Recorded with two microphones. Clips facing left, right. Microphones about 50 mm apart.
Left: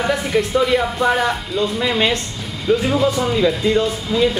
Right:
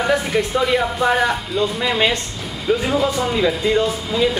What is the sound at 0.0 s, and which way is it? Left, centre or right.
Speech, centre.